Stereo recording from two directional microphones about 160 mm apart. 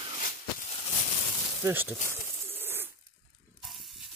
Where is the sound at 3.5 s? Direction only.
Centre (ahead or behind).